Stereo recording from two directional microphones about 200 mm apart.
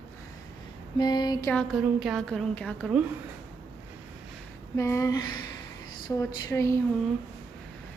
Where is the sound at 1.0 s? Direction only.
20° left (ahead or behind).